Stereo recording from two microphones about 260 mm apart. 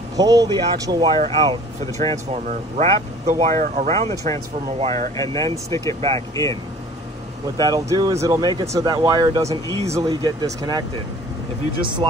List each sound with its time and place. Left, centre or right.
0.1 s speech: centre
5.1 s speech: centre
5.9 s speech: right
6.3 s speech: centre
7.5 s speech: centre
11.8 s speech: centre